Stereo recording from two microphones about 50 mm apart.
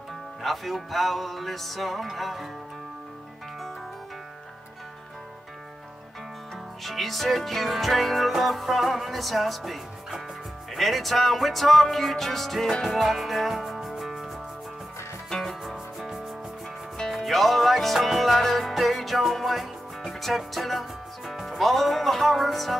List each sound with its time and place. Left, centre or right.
0.4 s music: centre
6.8 s music: centre
17.1 s music: centre
21.3 s speech: centre